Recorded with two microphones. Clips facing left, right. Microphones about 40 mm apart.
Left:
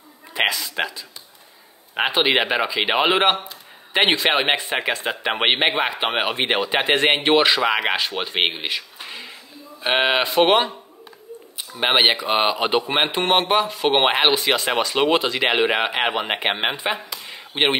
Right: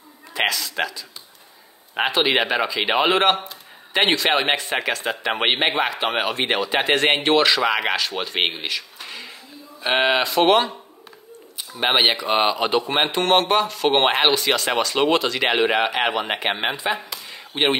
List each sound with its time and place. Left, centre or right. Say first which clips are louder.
0.3 s a woman's voice: left 1 dB; centre
2.1 s speech: left 1 dB; centre
8.6 s a sound: left 1 dB; centre
9.8 s speech: even; centre
10.2 s speech: even; centre
11.7 s speech: left 1 dB; centre
17.3 s a sound: even; centre